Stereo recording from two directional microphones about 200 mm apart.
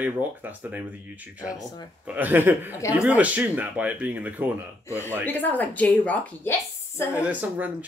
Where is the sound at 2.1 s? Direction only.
10° right (ahead or behind).